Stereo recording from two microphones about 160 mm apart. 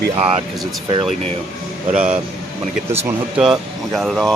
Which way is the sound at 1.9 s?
40° right (ahead or behind).